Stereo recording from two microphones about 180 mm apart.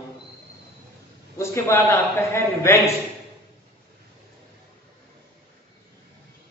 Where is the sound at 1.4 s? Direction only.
15° left (ahead or behind).